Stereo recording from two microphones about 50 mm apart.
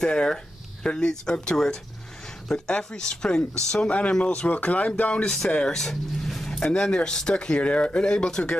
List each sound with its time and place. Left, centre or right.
0.0 s speech: centre
4.2 s speech: left
5.2 s speech: centre
6.7 s speech: centre